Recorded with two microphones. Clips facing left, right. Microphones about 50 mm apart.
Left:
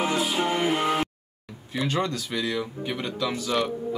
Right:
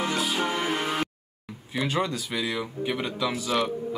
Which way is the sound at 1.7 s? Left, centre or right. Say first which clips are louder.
Even; centre.